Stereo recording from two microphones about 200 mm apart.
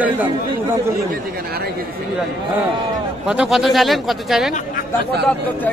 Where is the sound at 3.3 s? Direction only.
5° right (ahead or behind).